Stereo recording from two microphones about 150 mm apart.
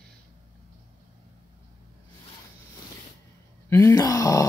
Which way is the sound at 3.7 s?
15° left (ahead or behind).